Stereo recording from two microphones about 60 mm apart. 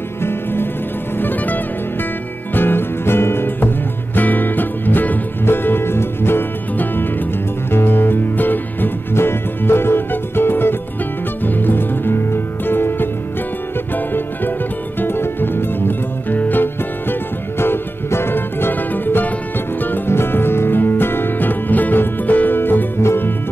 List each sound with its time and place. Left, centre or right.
0.2 s music: left